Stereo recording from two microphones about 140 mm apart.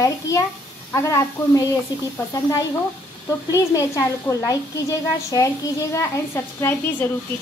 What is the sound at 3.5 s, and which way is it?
A woman's voice, 25° left (ahead or behind).